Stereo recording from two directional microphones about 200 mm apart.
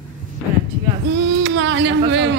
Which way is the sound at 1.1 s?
65° right (ahead or behind).